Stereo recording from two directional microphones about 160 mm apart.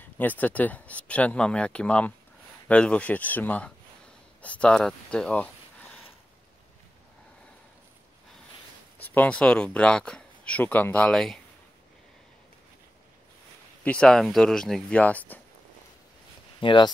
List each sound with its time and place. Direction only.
0.0 s speech: 10° left (ahead or behind)
8.9 s speech: 10° left (ahead or behind)
13.8 s speech: 5° left (ahead or behind)
16.5 s speech: 30° left (ahead or behind)